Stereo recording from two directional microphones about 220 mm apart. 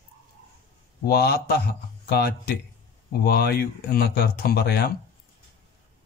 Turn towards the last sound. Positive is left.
turn(degrees=45)  # may be behind; listen again after turning